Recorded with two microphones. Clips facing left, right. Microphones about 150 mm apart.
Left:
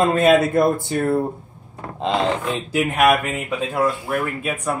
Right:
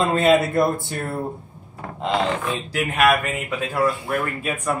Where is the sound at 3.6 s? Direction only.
Centre (ahead or behind).